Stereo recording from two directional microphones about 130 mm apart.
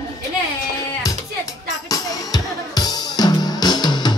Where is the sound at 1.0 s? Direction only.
25° left (ahead or behind).